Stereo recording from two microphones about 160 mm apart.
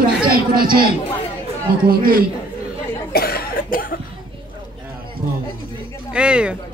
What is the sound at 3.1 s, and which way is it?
Cough, 75° left (ahead or behind).